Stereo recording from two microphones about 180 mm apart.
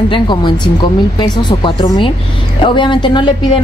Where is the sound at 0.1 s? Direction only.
25° left (ahead or behind).